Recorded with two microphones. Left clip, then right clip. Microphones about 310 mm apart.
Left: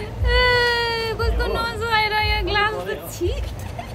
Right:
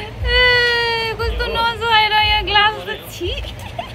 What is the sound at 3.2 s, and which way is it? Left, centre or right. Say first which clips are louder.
Speech: right 1 dB; centre.